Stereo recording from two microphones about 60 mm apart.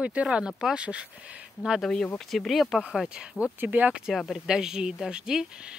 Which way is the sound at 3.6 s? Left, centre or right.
Right.